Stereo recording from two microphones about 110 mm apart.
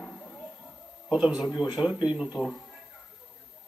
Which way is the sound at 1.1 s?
5° right (ahead or behind).